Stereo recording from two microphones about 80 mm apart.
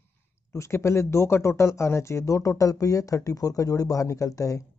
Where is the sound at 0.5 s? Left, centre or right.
Left.